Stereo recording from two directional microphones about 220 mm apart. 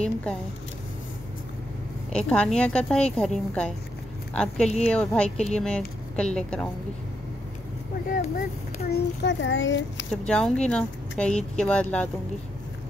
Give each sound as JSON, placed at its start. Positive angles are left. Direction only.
{"t": 0.0, "sound": "speech", "side_deg": 5}
{"t": 2.1, "sound": "speech", "side_deg": 5}
{"t": 4.6, "sound": "a woman's voice", "side_deg": 30}
{"t": 4.9, "sound": "speech", "side_deg": 5}
{"t": 8.1, "sound": "speech", "side_deg": 35}
{"t": 8.9, "sound": "a child's voice", "side_deg": 55}
{"t": 10.2, "sound": "speech", "side_deg": 5}